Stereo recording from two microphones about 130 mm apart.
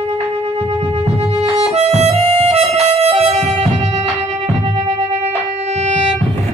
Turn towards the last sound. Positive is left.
turn(degrees=-60)  # may be behind; listen again after turning